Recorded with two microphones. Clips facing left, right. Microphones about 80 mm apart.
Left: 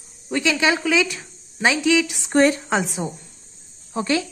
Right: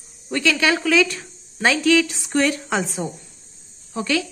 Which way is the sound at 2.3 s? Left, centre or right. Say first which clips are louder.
Left 4 dB; left.